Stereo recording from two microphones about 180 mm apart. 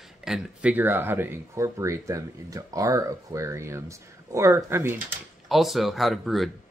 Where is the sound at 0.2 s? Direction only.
5° right (ahead or behind).